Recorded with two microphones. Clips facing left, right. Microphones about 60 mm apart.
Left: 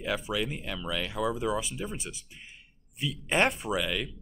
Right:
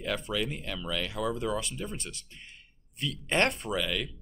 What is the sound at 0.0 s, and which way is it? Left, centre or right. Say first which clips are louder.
Speech: left 1 dB; centre.